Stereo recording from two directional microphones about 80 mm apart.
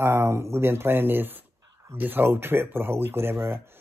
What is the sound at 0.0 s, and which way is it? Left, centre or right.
Speech, right.